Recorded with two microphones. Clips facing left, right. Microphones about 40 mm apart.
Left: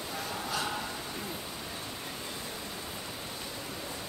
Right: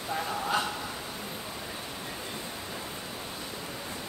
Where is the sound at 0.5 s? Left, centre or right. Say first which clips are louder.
Right 4 dB; right.